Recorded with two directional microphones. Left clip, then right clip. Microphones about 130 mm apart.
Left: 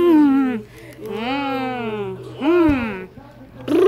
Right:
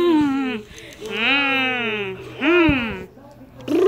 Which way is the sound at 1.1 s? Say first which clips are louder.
Right 5 dB; 25° left (ahead or behind).